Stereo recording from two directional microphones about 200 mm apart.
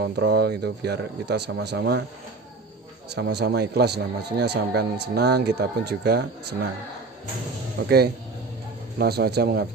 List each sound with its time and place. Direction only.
0.0 s a man's voice: 55° right (ahead or behind)
3.2 s a man's voice: 55° right (ahead or behind)
7.8 s a man's voice: 50° right (ahead or behind)